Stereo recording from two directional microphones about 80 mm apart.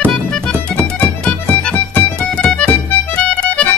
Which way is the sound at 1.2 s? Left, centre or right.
Centre.